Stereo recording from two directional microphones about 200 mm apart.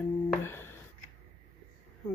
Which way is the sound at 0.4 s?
10° left (ahead or behind).